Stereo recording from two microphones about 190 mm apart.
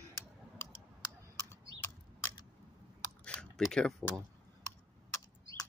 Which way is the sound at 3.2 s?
5° left (ahead or behind).